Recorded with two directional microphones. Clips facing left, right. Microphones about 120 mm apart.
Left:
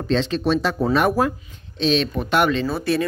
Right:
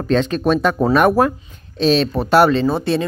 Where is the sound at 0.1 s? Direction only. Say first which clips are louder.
Right 4 dB; 50° right (ahead or behind).